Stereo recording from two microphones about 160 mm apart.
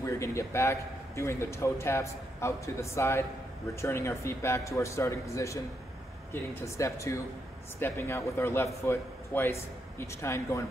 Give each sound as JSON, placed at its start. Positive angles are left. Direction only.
{"t": 0.0, "sound": "a man's voice", "side_deg": 15}
{"t": 6.6, "sound": "a man's voice", "side_deg": 20}